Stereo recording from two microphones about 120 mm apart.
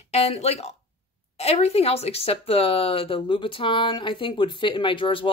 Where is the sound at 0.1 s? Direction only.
60° left (ahead or behind).